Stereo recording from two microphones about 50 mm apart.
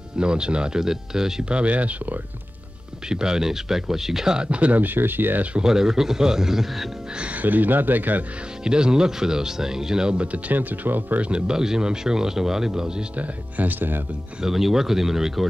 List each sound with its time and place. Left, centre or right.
0.2 s speech: centre
1.5 s speech: right
3.1 s speech: centre; by 5.5 s right
5.6 s speech: centre
7.4 s speech: right
8.6 s speech: centre
10.5 s speech: right
11.2 s speech: centre
13.2 s speech: right
14.4 s speech: centre